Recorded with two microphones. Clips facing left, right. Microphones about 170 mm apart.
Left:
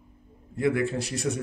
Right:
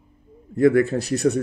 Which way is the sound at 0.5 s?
40° right (ahead or behind).